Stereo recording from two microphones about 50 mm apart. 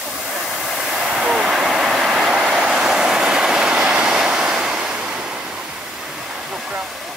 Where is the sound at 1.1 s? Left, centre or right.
Centre.